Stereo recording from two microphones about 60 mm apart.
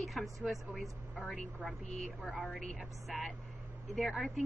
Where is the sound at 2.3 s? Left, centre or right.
Centre.